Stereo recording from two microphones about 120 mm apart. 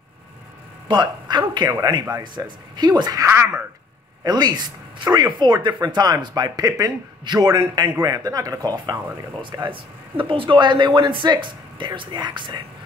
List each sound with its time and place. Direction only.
0.8 s a man's voice: 40° right (ahead or behind)
3.3 s speech: 20° right (ahead or behind)
4.2 s a man's voice: 35° right (ahead or behind)